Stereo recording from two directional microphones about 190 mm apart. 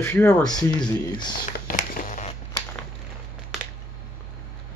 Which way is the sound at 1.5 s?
45° left (ahead or behind).